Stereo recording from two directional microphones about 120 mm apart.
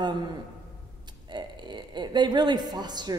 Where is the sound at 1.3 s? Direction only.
40° right (ahead or behind).